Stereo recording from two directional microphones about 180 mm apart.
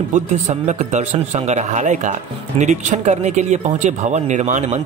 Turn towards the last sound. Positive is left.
turn(degrees=-40)  # may be behind; listen again after turning